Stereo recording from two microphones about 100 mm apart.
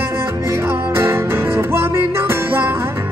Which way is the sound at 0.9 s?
25° right (ahead or behind).